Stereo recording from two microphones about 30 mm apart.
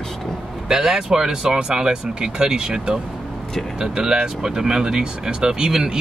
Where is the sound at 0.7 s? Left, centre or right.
Centre.